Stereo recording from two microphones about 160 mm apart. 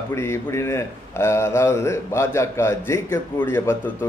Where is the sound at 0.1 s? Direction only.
15° left (ahead or behind).